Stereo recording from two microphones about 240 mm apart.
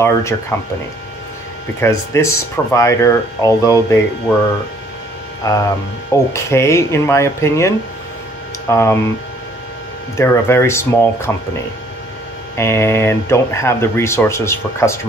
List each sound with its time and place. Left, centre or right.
0.0 s speech: centre
1.8 s speech: centre
10.1 s speech: centre
12.5 s speech: centre